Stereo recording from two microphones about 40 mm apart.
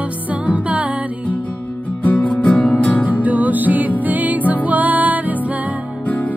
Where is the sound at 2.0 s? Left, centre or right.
Left.